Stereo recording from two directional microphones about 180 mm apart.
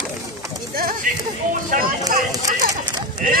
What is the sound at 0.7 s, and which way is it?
A child's voice, 55° right (ahead or behind).